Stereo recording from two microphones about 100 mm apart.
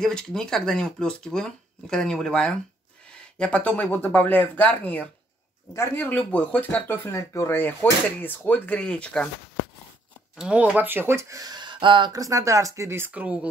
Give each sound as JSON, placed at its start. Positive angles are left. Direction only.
{"t": 0.0, "sound": "speech", "side_deg": 5}
{"t": 5.7, "sound": "speech", "side_deg": 30}
{"t": 6.0, "sound": "speech", "side_deg": 15}
{"t": 10.3, "sound": "speech", "side_deg": -10}
{"t": 10.8, "sound": "speech", "side_deg": -20}
{"t": 12.1, "sound": "speech", "side_deg": -35}
{"t": 13.1, "sound": "speech", "side_deg": -15}